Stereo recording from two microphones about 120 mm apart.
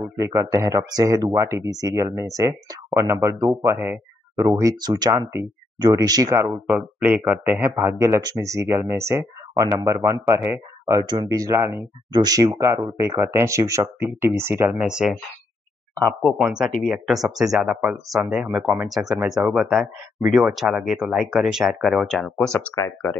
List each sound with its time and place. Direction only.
0.0 s speech: 25° right (ahead or behind)
4.7 s speech: 35° right (ahead or behind)
6.5 s speech: 15° right (ahead or behind)
14.8 s speech: 5° right (ahead or behind)
20.2 s speech: 15° right (ahead or behind)
20.5 s speech: centre (ahead or behind)
22.8 s speech: 25° left (ahead or behind)